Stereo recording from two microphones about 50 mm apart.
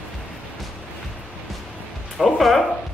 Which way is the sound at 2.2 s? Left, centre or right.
Centre.